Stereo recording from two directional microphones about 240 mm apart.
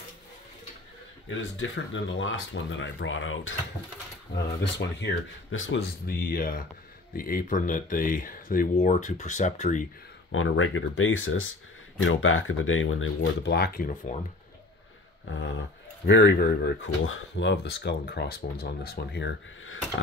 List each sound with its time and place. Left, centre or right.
1.3 s speech: left
4.7 s speech: left
5.8 s speech: left
10.3 s speech: left
15.3 s speech: left